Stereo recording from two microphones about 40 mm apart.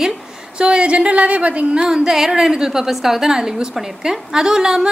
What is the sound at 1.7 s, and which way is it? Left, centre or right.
A woman's voice, centre.